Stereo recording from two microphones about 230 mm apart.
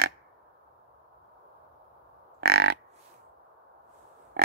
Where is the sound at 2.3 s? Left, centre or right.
Right.